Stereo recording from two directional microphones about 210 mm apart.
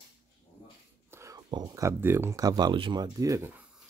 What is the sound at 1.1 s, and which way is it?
Speech, 15° right (ahead or behind).